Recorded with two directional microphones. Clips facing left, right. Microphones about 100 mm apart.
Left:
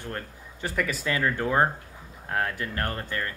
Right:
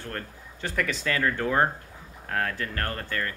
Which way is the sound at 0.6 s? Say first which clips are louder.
Even; 5° left (ahead or behind).